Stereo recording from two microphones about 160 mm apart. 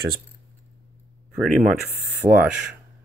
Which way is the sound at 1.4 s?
Centre (ahead or behind).